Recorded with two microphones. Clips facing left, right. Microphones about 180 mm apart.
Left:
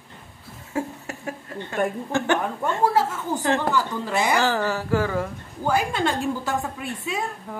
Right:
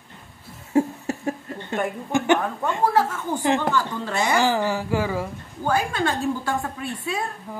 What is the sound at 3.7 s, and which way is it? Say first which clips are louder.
Speech: left 1 dB; 10° left (ahead or behind).